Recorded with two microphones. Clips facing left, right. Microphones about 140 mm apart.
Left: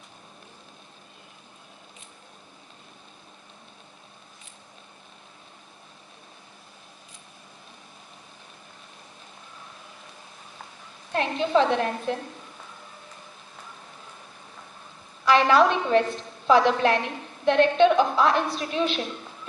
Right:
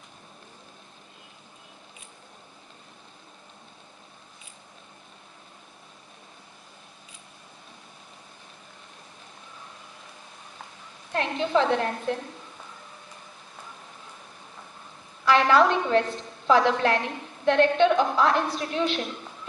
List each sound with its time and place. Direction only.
11.1 s a woman's voice: 15° left (ahead or behind)
15.2 s a woman's voice: 15° left (ahead or behind)